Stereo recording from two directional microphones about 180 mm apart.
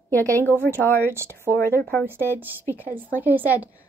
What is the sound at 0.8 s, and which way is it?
A woman's voice, 10° left (ahead or behind).